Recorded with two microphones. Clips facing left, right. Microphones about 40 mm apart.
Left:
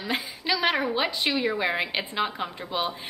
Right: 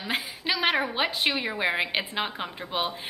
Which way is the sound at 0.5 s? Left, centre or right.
Centre.